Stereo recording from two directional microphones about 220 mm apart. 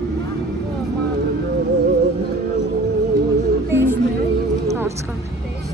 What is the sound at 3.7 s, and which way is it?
Music, 10° right (ahead or behind).